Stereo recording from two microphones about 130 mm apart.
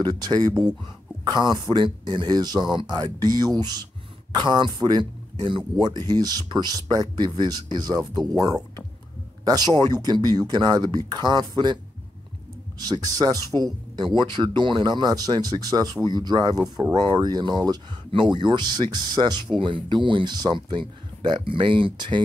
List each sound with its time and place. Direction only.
0.0 s speech: 30° right (ahead or behind)